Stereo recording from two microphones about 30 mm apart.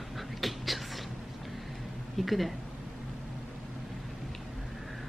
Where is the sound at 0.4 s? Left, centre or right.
Centre.